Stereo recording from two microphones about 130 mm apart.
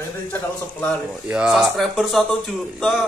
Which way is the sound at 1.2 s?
10° right (ahead or behind).